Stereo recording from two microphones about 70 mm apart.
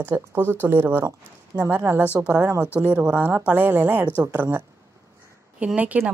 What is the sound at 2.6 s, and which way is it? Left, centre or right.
Speech, left.